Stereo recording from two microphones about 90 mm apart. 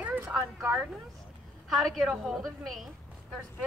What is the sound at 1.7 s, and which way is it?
A woman's voice, centre (ahead or behind).